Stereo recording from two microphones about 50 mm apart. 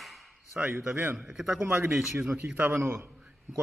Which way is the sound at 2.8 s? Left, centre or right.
Right.